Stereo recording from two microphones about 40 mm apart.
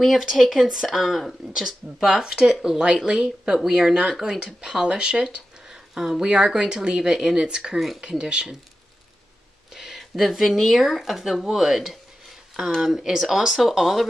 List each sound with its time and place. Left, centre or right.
0.0 s speech: centre; by 8.5 s right
9.8 s speech: centre